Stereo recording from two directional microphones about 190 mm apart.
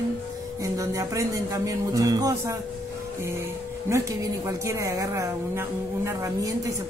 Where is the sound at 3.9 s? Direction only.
15° right (ahead or behind).